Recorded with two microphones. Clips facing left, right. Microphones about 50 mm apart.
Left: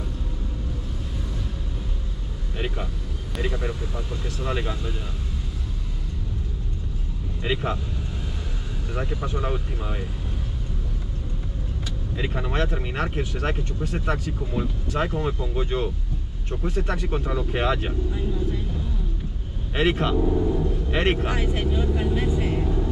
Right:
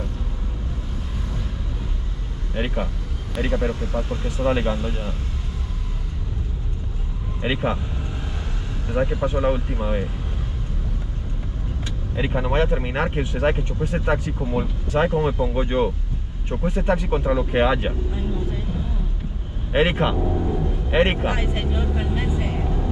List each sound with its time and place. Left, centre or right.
2.5 s vehicle: right
3.5 s speech: centre
3.9 s speech: right
7.4 s speech: right
8.9 s speech: centre
12.2 s speech: centre
19.7 s speech: right